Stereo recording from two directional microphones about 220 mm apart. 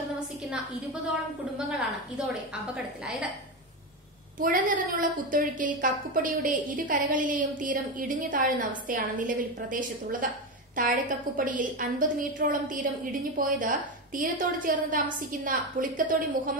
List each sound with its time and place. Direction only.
2.7 s a woman's voice: 5° right (ahead or behind)
4.4 s a woman's voice: 40° right (ahead or behind)